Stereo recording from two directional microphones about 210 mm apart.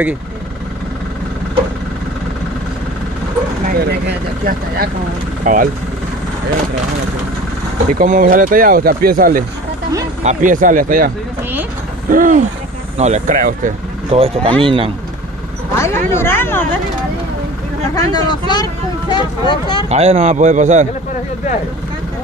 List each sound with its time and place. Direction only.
3.6 s speech: 45° right (ahead or behind)
5.4 s a man's voice: 40° right (ahead or behind)
7.9 s a man's voice: 40° right (ahead or behind)
12.1 s a man's voice: 40° right (ahead or behind); by 14.9 s 25° right (ahead or behind)
15.7 s speech: 10° left (ahead or behind)
17.9 s speech: 20° left (ahead or behind)
19.9 s a man's voice: 30° right (ahead or behind)